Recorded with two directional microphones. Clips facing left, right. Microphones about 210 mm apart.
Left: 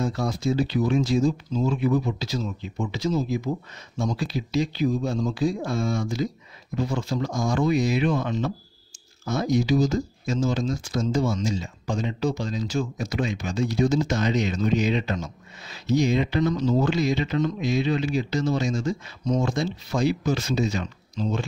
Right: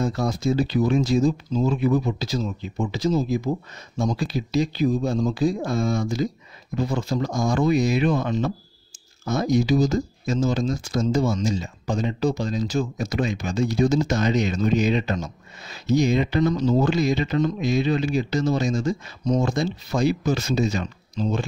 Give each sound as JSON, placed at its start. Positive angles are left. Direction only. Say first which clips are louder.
{"t": 0.0, "sound": "speech", "louder": "right 2 dB", "side_deg": -45}